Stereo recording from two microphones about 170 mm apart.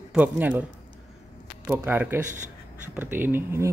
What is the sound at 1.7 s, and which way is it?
Speech, 10° right (ahead or behind).